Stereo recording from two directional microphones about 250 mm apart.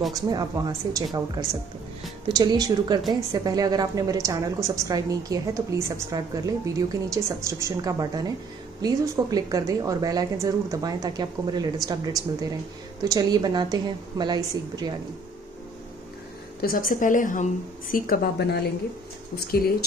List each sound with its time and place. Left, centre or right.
0.1 s speech: centre
16.6 s speech: left